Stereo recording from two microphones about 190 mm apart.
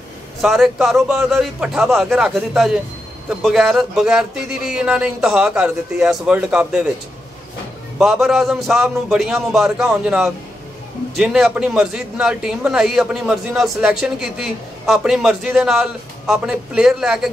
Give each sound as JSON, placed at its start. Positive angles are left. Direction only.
{"t": 0.4, "sound": "speech", "side_deg": 0}
{"t": 8.0, "sound": "speech", "side_deg": 0}